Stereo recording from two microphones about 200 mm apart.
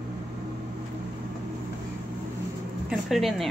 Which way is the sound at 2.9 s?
Centre (ahead or behind).